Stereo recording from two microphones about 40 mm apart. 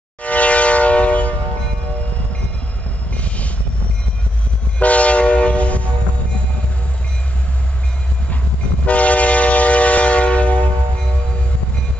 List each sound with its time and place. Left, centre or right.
0.2 s train: left
3.2 s vehicle: left
4.7 s train: left
8.8 s train: left